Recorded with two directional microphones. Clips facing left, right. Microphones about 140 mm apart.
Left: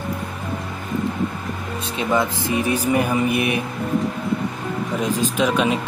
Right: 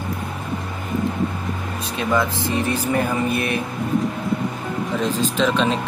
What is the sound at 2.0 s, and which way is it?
Speech, 20° left (ahead or behind).